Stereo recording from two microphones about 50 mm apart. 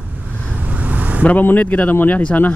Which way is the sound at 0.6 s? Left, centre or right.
Right.